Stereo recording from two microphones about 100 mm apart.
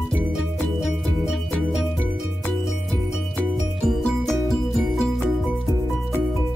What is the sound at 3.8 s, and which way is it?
Music, 5° left (ahead or behind).